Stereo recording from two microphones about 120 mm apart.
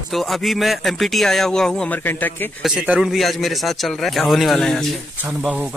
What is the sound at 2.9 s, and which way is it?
A man's voice, 5° right (ahead or behind).